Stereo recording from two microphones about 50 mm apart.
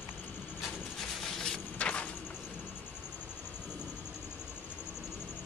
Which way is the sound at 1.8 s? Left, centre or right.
Left.